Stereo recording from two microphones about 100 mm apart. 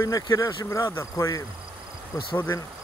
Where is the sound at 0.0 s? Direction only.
35° left (ahead or behind).